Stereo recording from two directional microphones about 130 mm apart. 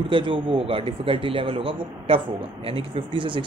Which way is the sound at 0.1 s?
40° right (ahead or behind).